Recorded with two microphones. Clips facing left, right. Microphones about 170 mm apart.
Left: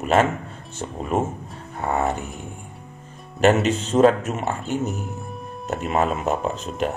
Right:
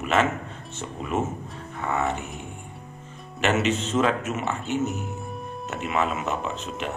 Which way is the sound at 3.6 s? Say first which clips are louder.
Left 6 dB; 35° left (ahead or behind).